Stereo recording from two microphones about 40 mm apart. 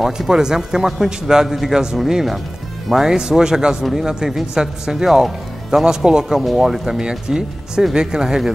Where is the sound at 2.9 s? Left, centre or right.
Centre.